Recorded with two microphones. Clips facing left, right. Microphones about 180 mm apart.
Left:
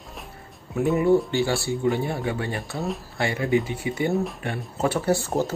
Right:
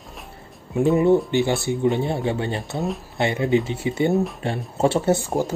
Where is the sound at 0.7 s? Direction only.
25° right (ahead or behind).